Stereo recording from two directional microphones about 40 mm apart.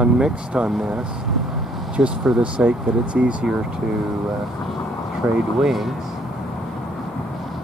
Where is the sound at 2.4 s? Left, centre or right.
Right.